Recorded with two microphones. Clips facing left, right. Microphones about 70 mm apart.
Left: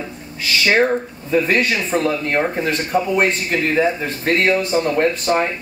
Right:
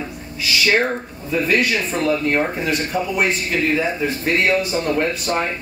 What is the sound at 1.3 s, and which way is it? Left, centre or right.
Speech, left.